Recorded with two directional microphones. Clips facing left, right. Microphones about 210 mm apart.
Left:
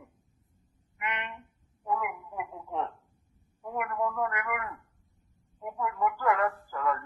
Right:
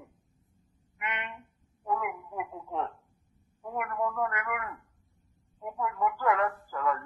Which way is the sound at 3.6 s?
Centre (ahead or behind).